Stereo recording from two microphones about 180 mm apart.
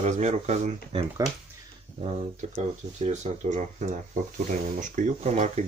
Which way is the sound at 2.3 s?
40° right (ahead or behind).